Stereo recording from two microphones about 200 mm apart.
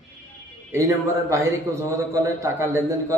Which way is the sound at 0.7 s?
15° right (ahead or behind).